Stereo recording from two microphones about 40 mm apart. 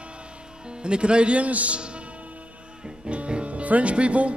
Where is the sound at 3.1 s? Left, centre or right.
Right.